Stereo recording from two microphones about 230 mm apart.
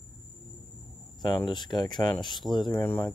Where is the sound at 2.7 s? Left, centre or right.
Centre.